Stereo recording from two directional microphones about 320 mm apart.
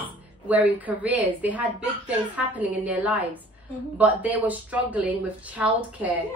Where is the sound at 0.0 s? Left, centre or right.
Centre.